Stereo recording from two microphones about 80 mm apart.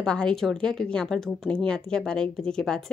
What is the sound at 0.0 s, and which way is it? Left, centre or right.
A woman's voice, centre.